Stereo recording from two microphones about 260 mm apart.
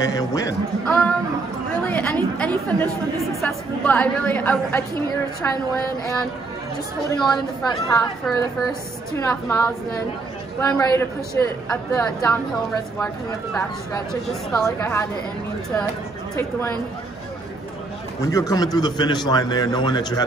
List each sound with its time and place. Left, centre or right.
0.0 s a man's voice: centre
9.2 s a man's voice: centre
18.2 s a man's voice: centre